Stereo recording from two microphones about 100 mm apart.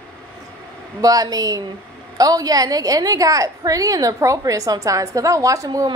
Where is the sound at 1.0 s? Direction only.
40° right (ahead or behind).